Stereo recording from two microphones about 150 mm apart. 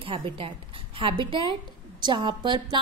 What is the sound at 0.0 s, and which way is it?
A woman's voice, 40° right (ahead or behind).